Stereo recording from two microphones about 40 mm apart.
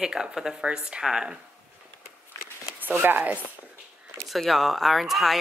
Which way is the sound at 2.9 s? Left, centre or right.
Right.